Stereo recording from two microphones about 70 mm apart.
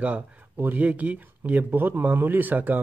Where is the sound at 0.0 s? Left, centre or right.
Right.